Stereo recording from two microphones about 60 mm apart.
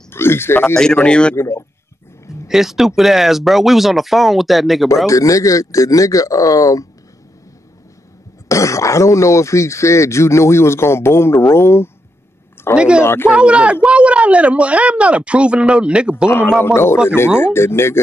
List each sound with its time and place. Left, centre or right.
0.1 s speech: left
1.0 s a man's voice: centre
1.3 s speech: left
2.4 s speech: centre
5.0 s speech: left
8.5 s speech: left
12.7 s speech: centre
13.0 s speech: left
13.3 s speech: centre
16.6 s speech: left